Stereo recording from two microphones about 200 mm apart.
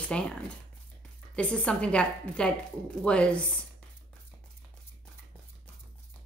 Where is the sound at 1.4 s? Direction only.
5° left (ahead or behind).